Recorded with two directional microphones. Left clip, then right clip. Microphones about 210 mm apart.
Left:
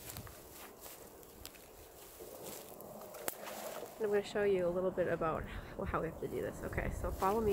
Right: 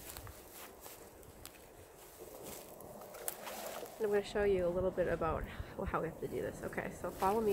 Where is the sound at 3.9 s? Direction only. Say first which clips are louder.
Even; centre (ahead or behind).